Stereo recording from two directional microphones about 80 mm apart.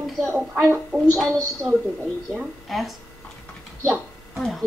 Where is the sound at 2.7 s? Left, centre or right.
Centre.